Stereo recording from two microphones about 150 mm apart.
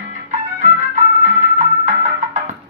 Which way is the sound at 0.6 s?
55° right (ahead or behind).